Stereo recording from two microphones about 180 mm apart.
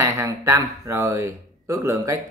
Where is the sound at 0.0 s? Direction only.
15° right (ahead or behind).